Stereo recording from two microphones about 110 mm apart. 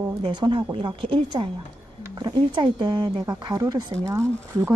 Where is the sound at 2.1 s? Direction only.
40° right (ahead or behind).